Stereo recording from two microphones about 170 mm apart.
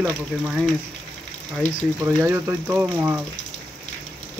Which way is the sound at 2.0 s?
15° right (ahead or behind).